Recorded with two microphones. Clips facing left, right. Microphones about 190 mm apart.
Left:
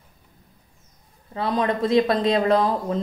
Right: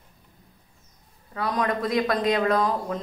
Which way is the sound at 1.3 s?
25° left (ahead or behind).